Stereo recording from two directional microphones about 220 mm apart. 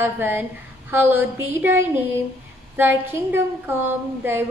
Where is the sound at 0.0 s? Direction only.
10° right (ahead or behind).